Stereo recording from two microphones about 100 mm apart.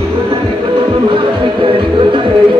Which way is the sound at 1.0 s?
60° right (ahead or behind).